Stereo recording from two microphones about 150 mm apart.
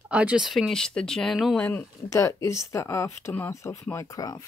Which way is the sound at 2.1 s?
20° left (ahead or behind).